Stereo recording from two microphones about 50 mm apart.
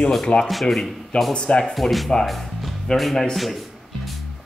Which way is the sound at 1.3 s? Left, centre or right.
Centre.